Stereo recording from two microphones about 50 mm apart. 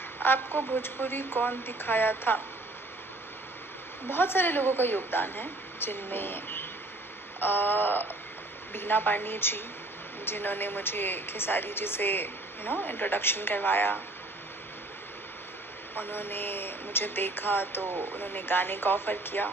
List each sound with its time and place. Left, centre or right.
0.2 s a woman's voice: left
4.1 s a woman's voice: left
15.9 s a woman's voice: left